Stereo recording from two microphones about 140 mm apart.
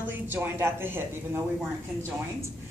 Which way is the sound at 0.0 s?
15° right (ahead or behind).